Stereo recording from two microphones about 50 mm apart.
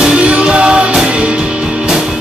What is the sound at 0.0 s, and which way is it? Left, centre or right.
Music, right.